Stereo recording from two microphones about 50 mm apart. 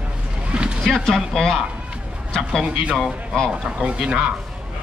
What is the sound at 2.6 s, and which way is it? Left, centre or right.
Speech, centre.